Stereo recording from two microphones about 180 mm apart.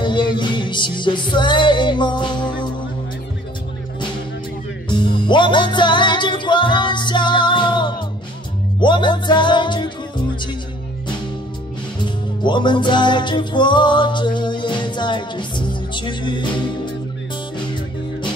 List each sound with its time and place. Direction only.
0.0 s music: 25° left (ahead or behind)
4.8 s music: 25° left (ahead or behind)
12.0 s music: 25° left (ahead or behind)